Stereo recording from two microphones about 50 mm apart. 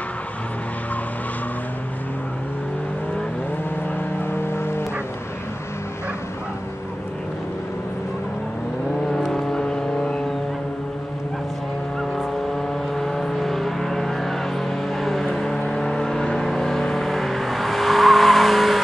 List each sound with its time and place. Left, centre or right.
4.2 s vehicle: left
9.1 s vehicle: centre
12.9 s vehicle: centre